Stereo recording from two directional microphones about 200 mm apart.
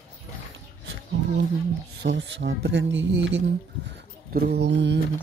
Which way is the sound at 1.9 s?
65° right (ahead or behind).